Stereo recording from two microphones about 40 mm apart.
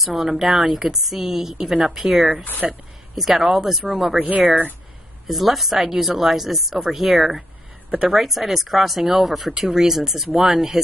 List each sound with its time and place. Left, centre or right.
0.0 s a woman's voice: centre
2.6 s speech: centre
3.2 s a woman's voice: centre
4.2 s speech: right
5.2 s speech: centre
10.3 s speech: right